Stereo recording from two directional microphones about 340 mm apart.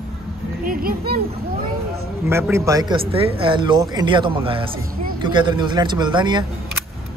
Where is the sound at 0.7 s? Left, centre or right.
Right.